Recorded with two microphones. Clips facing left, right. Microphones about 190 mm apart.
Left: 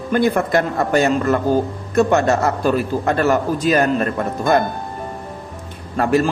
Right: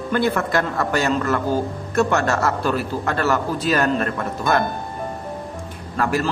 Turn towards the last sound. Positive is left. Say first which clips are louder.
# left 5 dB
turn(degrees=25)  # may be behind; listen again after turning